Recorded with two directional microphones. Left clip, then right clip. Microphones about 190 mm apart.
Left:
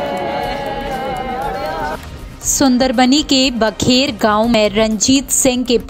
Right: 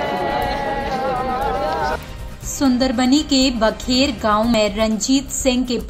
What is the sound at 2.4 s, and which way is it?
A woman's voice, 45° left (ahead or behind).